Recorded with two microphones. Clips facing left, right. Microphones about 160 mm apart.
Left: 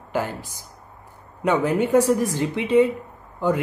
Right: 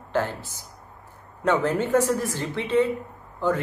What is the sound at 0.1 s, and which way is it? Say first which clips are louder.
Speech: even; 10° left (ahead or behind).